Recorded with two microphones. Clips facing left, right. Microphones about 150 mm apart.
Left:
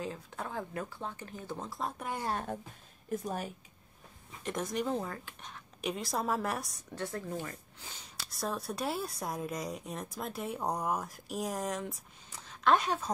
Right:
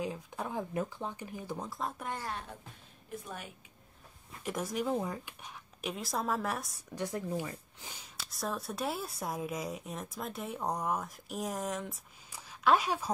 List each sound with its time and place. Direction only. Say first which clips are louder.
0.0 s speech: right 2 dB; 15° right (ahead or behind)
1.7 s a woman's voice: even; centre (ahead or behind)
2.3 s a woman's voice: left 7 dB; 45° left (ahead or behind)
4.3 s a woman's voice: even; 5° right (ahead or behind)
7.0 s speech: right 2 dB; 15° right (ahead or behind)
8.2 s a woman's voice: left 1 dB; centre (ahead or behind)